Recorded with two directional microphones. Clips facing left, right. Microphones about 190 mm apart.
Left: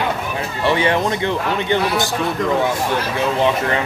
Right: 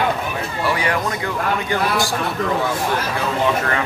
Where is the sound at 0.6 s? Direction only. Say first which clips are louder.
Left 5 dB; 25° left (ahead or behind).